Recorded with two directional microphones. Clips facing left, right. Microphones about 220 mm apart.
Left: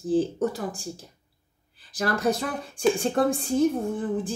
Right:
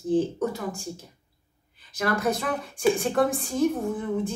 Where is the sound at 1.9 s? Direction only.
30° left (ahead or behind).